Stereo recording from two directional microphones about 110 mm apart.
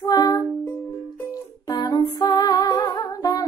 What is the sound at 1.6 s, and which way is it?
Music, 40° left (ahead or behind).